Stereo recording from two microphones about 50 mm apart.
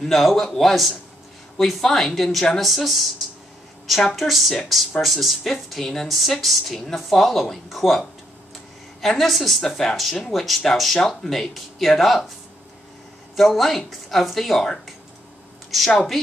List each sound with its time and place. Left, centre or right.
0.0 s speech: centre
9.0 s speech: centre
13.4 s speech: centre